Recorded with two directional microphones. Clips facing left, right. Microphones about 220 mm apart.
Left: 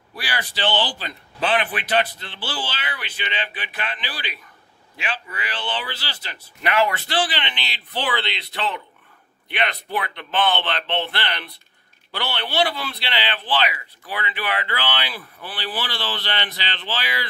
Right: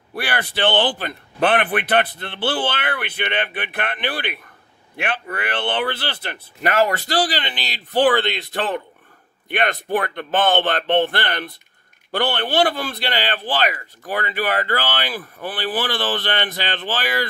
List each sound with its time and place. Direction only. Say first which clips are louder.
0.1 s a man's voice: right 6 dB; 60° right (ahead or behind)